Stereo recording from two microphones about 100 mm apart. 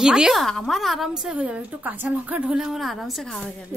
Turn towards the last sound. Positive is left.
turn(degrees=0)  # may be behind; listen again after turning